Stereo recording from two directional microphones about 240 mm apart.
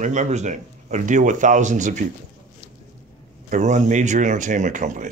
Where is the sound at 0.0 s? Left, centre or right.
Right.